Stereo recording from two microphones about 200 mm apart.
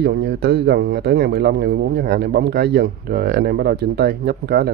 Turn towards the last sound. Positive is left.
turn(degrees=-50)  # may be behind; listen again after turning